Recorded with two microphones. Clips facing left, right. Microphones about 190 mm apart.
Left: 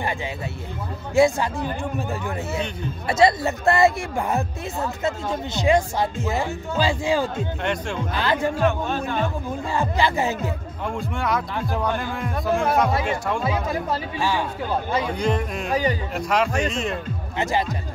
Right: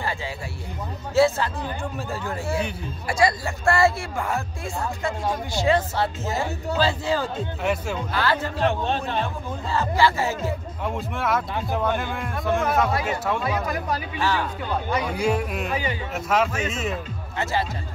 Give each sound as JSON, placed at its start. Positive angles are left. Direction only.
{"t": 1.1, "sound": "speech", "side_deg": 15}
{"t": 7.6, "sound": "speech", "side_deg": -5}
{"t": 8.1, "sound": "speech", "side_deg": 20}
{"t": 8.6, "sound": "a man's voice", "side_deg": -30}
{"t": 9.7, "sound": "speech", "side_deg": 15}
{"t": 10.9, "sound": "speech", "side_deg": 0}
{"t": 13.7, "sound": "speech", "side_deg": 25}
{"t": 15.0, "sound": "a man's voice", "side_deg": -10}
{"t": 15.7, "sound": "a man's voice", "side_deg": 40}
{"t": 16.2, "sound": "speech", "side_deg": -5}
{"t": 17.4, "sound": "speech", "side_deg": 15}